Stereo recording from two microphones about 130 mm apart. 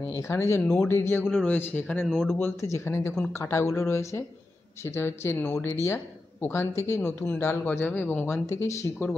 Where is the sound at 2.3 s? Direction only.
20° left (ahead or behind).